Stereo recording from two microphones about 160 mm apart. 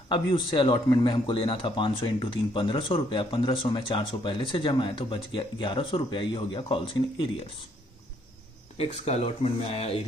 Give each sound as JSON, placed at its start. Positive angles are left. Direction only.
{"t": 0.1, "sound": "speech", "side_deg": 30}
{"t": 8.7, "sound": "speech", "side_deg": 40}